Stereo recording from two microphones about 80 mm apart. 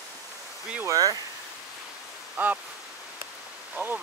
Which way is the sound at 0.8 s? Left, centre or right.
Right.